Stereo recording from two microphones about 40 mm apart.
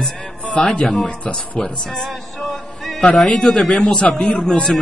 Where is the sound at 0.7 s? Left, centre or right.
Centre.